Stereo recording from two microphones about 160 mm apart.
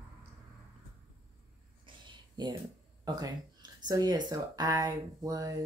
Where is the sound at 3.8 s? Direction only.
25° right (ahead or behind).